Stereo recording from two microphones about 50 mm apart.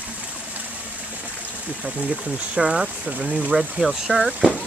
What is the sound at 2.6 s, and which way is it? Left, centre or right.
Speech, centre.